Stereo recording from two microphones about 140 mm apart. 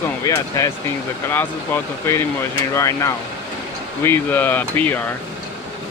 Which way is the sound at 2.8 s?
20° left (ahead or behind).